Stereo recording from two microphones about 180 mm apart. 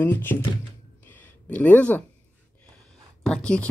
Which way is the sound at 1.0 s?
10° left (ahead or behind).